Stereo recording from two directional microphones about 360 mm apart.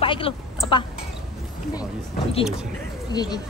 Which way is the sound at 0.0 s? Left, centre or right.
Centre.